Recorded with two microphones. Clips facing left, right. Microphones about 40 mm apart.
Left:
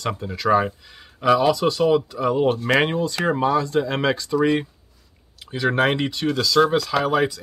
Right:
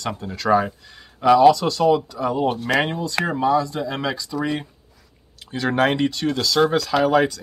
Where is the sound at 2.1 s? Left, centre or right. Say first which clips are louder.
Left 2 dB; left.